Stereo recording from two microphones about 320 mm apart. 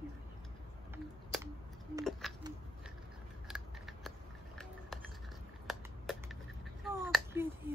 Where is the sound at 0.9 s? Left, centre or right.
Centre.